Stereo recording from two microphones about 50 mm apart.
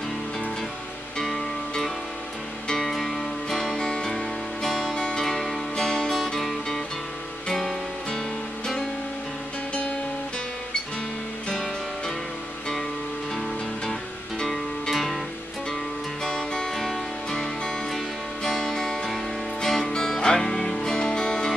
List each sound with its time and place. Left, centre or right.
1.1 s guitar: centre
2.7 s music: centre
14.4 s music: centre
16.3 s music: centre
16.7 s music: centre